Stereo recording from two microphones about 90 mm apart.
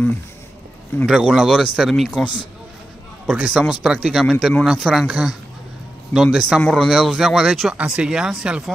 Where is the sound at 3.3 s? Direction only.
15° right (ahead or behind).